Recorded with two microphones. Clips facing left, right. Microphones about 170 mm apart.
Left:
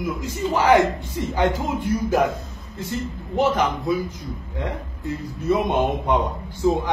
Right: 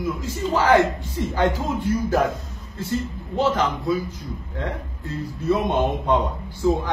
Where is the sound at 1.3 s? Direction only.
15° left (ahead or behind).